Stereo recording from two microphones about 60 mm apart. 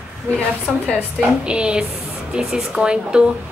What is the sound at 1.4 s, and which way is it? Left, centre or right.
A woman's voice, centre.